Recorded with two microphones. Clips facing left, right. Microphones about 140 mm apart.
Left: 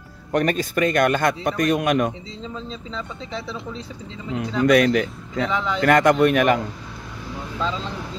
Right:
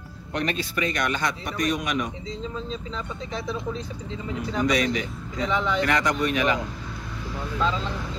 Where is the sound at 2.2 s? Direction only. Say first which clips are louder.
Right 1 dB; 40° right (ahead or behind).